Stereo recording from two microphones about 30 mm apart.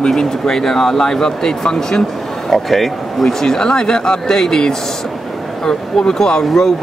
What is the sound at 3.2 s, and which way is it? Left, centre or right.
Speech, centre.